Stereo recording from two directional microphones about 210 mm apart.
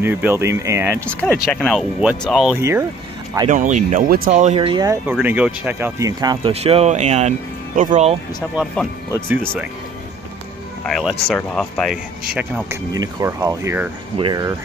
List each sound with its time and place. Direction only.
0.0 s speech: 10° right (ahead or behind)
1.5 s speech: 5° left (ahead or behind); by 2.8 s 10° right (ahead or behind)
3.4 s speech: 35° right (ahead or behind)
5.2 s speech: 5° right (ahead or behind); by 8.2 s 35° right (ahead or behind)
8.4 s speech: 5° left (ahead or behind)
10.9 s speech: centre (ahead or behind)
12.4 s speech: 10° right (ahead or behind)